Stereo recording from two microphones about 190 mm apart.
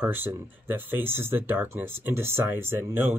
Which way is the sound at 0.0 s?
10° right (ahead or behind).